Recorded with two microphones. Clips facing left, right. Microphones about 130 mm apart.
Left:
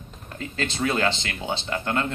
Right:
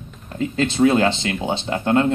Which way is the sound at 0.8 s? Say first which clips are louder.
Right 8 dB; 30° right (ahead or behind).